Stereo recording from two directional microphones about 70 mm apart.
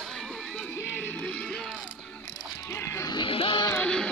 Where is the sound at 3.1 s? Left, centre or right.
Left.